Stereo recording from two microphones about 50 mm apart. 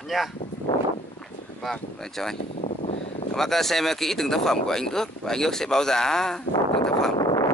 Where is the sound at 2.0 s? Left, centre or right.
Centre.